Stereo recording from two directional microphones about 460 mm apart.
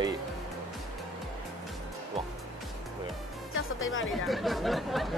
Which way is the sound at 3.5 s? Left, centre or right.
Left.